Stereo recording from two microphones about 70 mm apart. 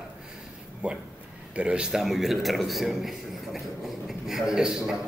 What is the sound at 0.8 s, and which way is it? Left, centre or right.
A man's voice, centre.